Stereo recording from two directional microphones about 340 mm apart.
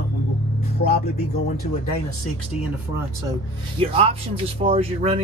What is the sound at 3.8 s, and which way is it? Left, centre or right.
Speech, centre.